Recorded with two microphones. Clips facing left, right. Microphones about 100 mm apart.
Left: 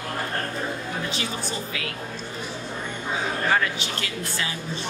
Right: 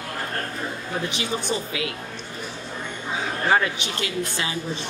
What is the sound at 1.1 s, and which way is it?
Speech, 20° right (ahead or behind).